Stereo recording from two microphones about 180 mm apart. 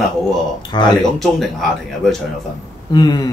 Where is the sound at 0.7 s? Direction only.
25° left (ahead or behind).